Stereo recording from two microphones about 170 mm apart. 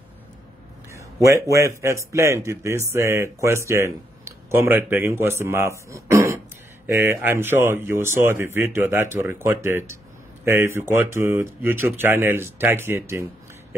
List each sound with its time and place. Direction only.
0.9 s a man's voice: 15° right (ahead or behind)